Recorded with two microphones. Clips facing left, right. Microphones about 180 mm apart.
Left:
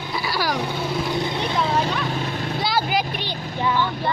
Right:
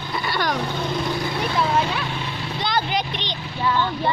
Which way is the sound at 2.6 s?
5° left (ahead or behind).